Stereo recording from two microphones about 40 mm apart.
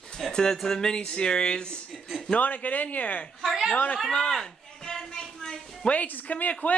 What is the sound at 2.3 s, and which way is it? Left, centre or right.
Speech, left.